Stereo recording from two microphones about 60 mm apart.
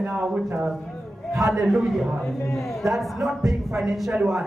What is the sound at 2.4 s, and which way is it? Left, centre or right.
Speech, left.